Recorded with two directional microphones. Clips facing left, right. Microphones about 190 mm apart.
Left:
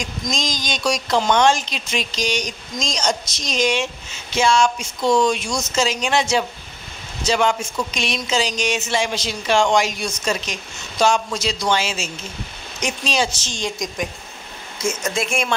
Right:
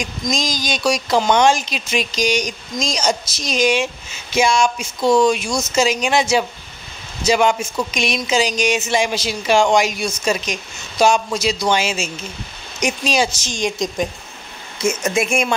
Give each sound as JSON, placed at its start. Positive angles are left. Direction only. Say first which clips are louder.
{"t": 0.0, "sound": "a woman's voice", "louder": "right 3 dB", "side_deg": -10}
{"t": 15.0, "sound": "speech", "louder": "right 5 dB", "side_deg": -20}